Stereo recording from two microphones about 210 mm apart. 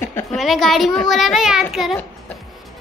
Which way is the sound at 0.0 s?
10° left (ahead or behind).